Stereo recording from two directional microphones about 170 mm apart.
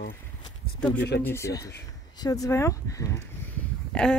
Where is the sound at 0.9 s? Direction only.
75° left (ahead or behind).